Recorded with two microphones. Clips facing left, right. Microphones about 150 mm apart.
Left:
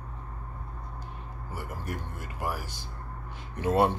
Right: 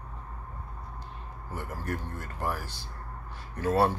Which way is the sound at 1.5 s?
15° left (ahead or behind).